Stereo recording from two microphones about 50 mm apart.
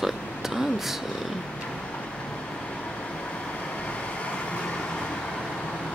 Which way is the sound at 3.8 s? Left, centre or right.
Left.